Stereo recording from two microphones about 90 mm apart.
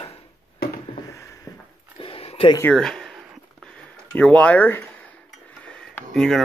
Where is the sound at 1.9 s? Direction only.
90° left.